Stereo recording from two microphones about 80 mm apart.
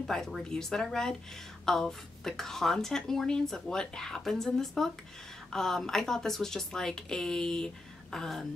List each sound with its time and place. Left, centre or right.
0.0 s a woman's voice: centre